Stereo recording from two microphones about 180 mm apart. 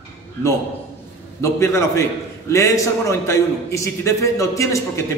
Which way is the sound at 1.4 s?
15° left (ahead or behind).